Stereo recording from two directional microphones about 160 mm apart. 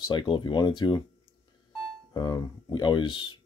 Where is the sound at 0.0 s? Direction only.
30° left (ahead or behind).